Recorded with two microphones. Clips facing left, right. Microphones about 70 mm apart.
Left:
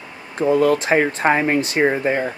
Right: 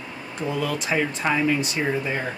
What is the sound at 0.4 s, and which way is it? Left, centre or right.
Speech, left.